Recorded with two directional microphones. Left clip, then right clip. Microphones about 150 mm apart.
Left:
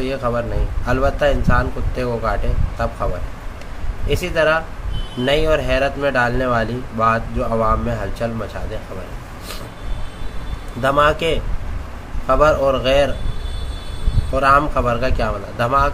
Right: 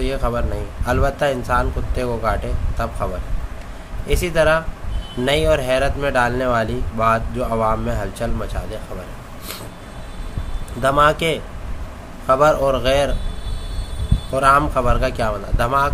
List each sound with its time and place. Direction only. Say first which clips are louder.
0.0 s speech: left 2 dB; 25° right (ahead or behind)
4.1 s speech: even; 25° right (ahead or behind)
10.8 s speech: even; 20° right (ahead or behind)
14.3 s speech: even; 25° right (ahead or behind)